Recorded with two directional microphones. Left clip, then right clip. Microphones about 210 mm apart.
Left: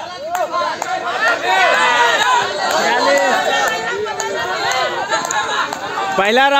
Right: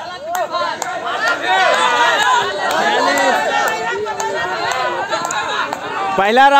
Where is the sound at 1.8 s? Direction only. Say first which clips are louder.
Even; 35° left (ahead or behind).